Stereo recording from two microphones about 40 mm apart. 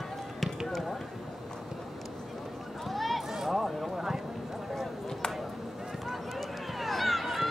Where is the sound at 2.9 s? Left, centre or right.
Centre.